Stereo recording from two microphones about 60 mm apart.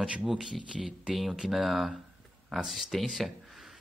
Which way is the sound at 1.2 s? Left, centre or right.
Centre.